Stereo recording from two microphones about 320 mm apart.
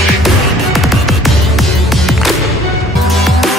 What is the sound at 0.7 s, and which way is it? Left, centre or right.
Music, centre.